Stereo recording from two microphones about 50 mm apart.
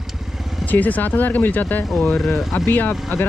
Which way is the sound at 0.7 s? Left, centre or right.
Left.